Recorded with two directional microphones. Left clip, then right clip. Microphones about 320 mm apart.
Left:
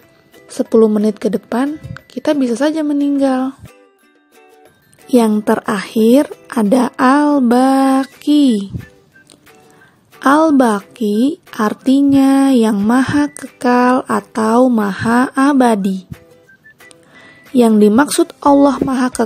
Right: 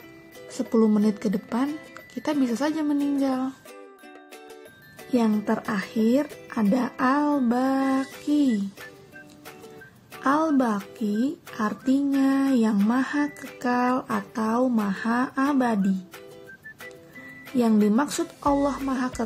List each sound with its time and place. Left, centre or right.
0.6 s a woman's voice: left
5.1 s a woman's voice: left
10.2 s a woman's voice: left
17.6 s a woman's voice: left